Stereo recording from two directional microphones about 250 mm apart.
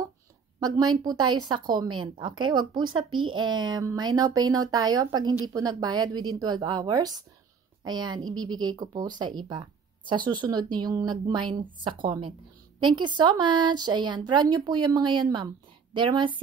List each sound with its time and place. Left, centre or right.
0.6 s speech: centre